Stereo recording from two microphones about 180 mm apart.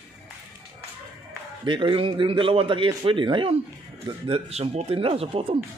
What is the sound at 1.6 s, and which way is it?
Speech, 25° right (ahead or behind).